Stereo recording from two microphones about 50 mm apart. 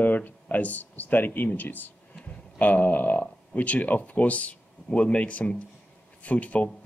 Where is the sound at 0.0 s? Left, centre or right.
Left.